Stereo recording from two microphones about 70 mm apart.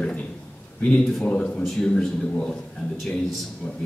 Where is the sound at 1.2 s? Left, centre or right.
Centre.